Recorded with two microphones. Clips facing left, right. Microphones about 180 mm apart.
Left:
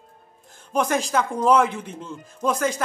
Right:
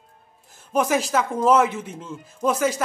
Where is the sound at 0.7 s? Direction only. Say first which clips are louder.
Right 1 dB; 5° right (ahead or behind).